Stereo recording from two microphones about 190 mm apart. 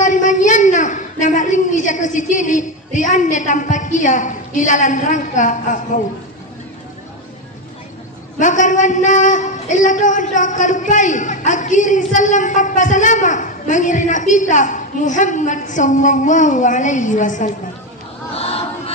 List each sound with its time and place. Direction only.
0.0 s a woman's voice: 40° left (ahead or behind)
8.4 s a man's voice: 40° left (ahead or behind)
18.3 s a sound: 30° left (ahead or behind)